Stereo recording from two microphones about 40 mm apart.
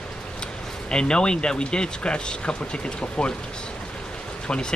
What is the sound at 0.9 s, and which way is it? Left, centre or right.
Speech, left.